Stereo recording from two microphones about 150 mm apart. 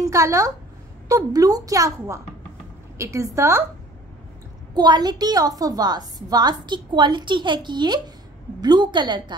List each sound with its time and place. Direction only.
0.0 s a woman's voice: 20° right (ahead or behind)
4.7 s a woman's voice: 25° right (ahead or behind)